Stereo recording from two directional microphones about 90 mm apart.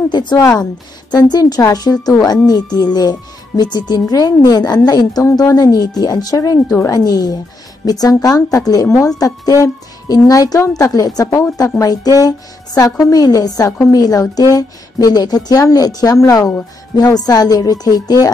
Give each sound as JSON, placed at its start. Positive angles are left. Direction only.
{"t": 0.1, "sound": "a sound", "side_deg": 55}
{"t": 1.1, "sound": "a woman's voice", "side_deg": 45}
{"t": 11.2, "sound": "a woman's voice", "side_deg": 30}
{"t": 11.8, "sound": "a woman's voice", "side_deg": 40}